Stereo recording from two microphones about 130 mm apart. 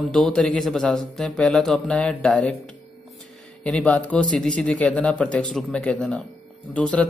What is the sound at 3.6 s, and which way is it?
Speech, 10° left (ahead or behind).